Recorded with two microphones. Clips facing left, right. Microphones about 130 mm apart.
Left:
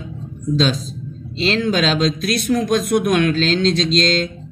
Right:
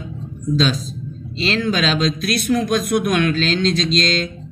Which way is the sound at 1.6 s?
40° left (ahead or behind).